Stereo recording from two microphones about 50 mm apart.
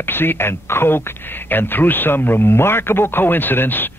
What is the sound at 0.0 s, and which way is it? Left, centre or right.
Speech, left.